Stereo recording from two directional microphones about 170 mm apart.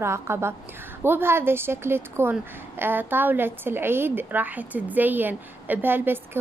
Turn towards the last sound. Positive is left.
turn(degrees=-10)  # may be behind; listen again after turning